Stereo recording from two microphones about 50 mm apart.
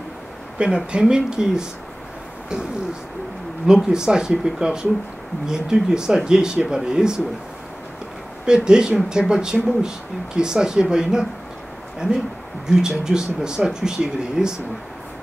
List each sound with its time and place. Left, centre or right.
0.6 s speech: right
3.6 s speech: centre
8.5 s speech: centre
12.6 s speech: centre